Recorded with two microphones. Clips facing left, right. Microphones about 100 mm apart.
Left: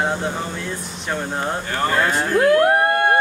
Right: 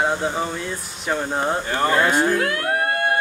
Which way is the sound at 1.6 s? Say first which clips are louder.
Right 1 dB; 15° right (ahead or behind).